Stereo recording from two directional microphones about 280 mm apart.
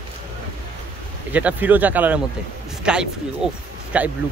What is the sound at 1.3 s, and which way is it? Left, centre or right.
Speech, centre.